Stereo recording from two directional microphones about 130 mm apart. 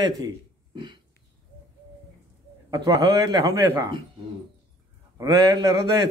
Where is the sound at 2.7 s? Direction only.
30° right (ahead or behind).